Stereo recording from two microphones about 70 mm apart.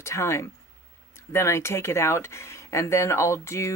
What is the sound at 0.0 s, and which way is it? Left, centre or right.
Speech, left.